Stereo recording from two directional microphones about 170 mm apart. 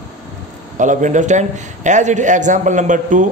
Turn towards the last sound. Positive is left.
turn(degrees=-50)  # may be behind; listen again after turning